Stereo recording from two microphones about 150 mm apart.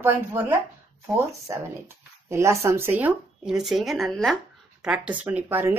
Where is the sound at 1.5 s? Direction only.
20° right (ahead or behind).